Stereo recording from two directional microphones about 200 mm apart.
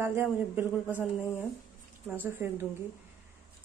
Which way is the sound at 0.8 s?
10° left (ahead or behind).